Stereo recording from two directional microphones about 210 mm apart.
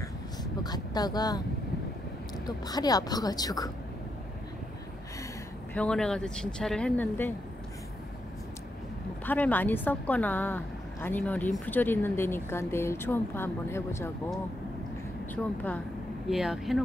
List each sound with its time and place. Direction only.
0.4 s a sound: 20° left (ahead or behind)
2.4 s a woman's voice: 20° left (ahead or behind)
5.8 s speech: 5° left (ahead or behind)
9.2 s a woman's voice: 10° left (ahead or behind)
15.3 s a woman's voice: 5° left (ahead or behind)